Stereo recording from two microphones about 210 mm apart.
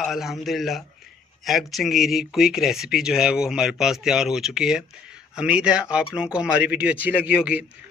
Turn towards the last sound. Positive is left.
turn(degrees=-5)  # may be behind; listen again after turning